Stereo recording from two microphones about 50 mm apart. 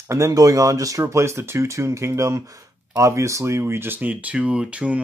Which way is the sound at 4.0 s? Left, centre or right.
Right.